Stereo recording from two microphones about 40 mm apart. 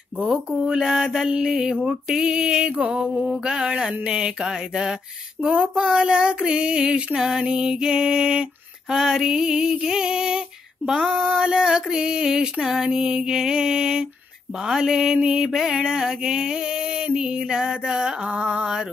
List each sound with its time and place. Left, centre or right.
0.2 s female singing: centre
1.4 s mantra: centre
7.2 s female singing: centre
10.9 s mantra: centre
14.6 s female singing: centre
15.1 s mantra: right
18.3 s mantra: right